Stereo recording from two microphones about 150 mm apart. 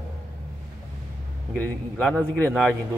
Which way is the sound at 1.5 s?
5° left (ahead or behind).